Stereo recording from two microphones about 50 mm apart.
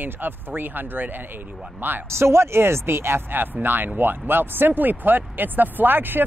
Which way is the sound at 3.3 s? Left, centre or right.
Right.